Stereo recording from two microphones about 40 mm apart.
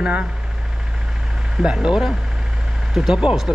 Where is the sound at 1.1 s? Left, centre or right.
Centre.